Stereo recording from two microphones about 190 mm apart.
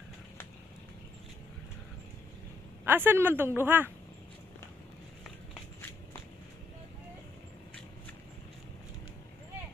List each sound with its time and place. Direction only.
2.8 s speech: 10° right (ahead or behind)